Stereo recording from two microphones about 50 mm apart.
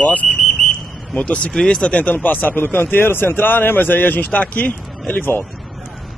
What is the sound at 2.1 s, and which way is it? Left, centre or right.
A man's voice, left.